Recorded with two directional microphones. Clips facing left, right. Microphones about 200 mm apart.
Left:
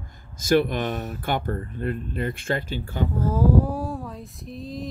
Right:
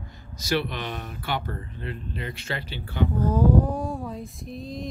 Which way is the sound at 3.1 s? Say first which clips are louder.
Even; 5° left (ahead or behind).